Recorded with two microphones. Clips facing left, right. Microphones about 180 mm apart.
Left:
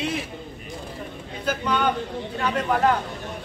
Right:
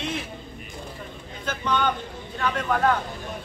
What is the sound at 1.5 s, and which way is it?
Speech, 10° left (ahead or behind).